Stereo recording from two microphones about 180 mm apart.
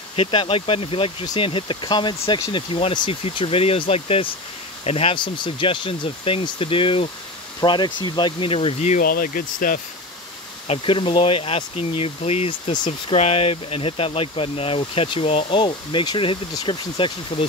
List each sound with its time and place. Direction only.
0.1 s speech: 30° left (ahead or behind)
9.0 s speech: 55° left (ahead or behind)
10.7 s speech: 30° left (ahead or behind)